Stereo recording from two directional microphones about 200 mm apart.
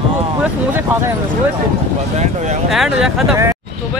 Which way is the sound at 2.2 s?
35° right (ahead or behind).